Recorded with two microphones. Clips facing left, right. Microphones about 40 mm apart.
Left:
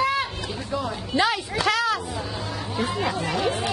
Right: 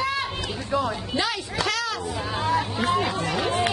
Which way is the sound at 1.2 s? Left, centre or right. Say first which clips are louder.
Left 5 dB; centre.